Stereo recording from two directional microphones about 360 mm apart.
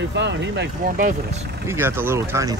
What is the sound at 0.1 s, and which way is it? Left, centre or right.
Speech, right.